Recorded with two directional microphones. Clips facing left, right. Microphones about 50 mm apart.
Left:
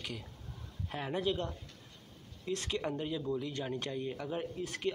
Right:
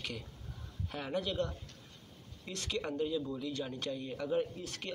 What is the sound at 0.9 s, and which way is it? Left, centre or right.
Speech, left.